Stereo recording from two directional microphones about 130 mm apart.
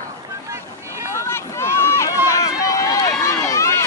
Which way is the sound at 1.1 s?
20° left (ahead or behind).